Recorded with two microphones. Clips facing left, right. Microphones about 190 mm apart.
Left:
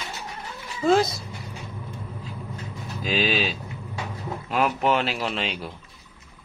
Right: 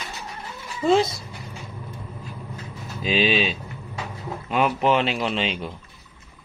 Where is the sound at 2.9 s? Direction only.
Centre (ahead or behind).